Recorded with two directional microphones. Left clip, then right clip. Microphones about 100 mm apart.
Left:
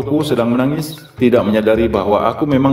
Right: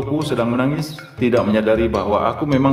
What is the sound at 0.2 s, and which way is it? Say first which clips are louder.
A man's voice: left 2 dB; 35° left (ahead or behind).